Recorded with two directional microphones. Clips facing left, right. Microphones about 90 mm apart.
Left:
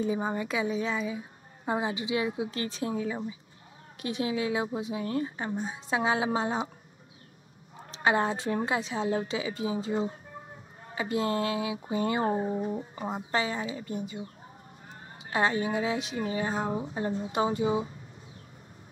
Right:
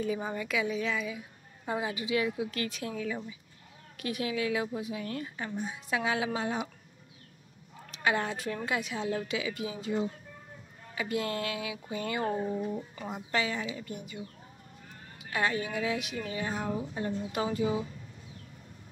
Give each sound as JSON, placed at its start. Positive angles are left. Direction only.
{"t": 0.0, "sound": "speech", "side_deg": 25}
{"t": 7.8, "sound": "speech", "side_deg": 30}